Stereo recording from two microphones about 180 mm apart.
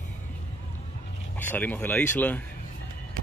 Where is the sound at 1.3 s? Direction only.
10° left (ahead or behind).